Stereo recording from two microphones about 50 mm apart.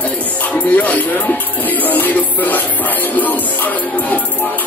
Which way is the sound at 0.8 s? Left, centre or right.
Left.